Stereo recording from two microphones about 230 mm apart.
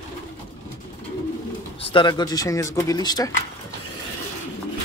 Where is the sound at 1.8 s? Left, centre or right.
Left.